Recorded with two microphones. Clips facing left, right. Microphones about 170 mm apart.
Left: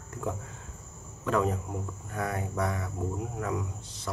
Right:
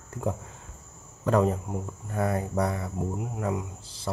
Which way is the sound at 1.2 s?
35° right (ahead or behind).